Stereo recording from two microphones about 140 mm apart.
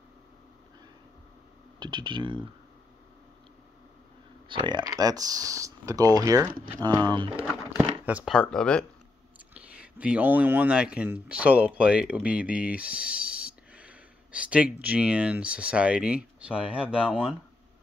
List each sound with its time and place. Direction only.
1.8 s speech: 35° right (ahead or behind)
4.5 s speech: 35° right (ahead or behind)
8.3 s speech: 5° left (ahead or behind)
9.5 s speech: 10° right (ahead or behind)